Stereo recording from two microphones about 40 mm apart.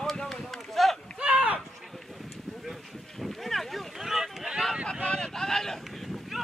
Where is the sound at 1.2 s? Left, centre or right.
Right.